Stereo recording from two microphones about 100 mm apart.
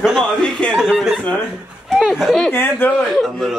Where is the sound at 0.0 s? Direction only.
Centre (ahead or behind).